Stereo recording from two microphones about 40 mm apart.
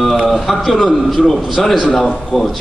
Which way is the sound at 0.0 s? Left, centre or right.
Centre.